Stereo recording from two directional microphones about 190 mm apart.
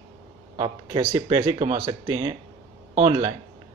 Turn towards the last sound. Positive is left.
turn(degrees=-25)  # may be behind; listen again after turning